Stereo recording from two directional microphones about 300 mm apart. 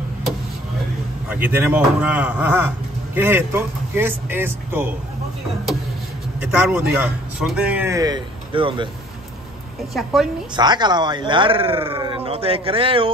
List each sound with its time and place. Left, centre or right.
1.6 s a man's voice: centre
6.4 s a man's voice: centre
9.9 s a man's voice: centre
10.5 s speech: centre